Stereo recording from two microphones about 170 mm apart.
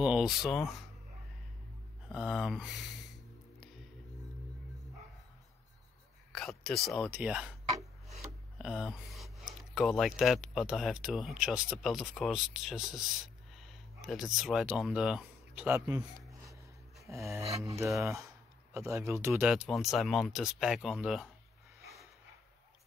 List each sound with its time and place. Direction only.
0.0 s speech: 5° right (ahead or behind)
2.0 s speech: centre (ahead or behind)
6.3 s speech: centre (ahead or behind)
8.5 s speech: centre (ahead or behind)
17.0 s a sound: 15° right (ahead or behind)
18.0 s speech: 15° right (ahead or behind)
19.4 s speech: 5° right (ahead or behind)